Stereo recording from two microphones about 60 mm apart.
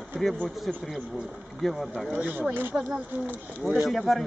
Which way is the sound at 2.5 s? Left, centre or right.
Right.